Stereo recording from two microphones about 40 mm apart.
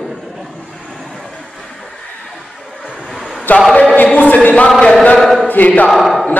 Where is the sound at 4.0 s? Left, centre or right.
Left.